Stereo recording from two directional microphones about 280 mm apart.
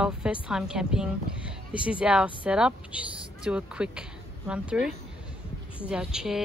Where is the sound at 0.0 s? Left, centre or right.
Centre.